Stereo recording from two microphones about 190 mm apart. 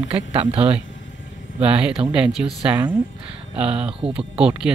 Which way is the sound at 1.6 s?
5° right (ahead or behind).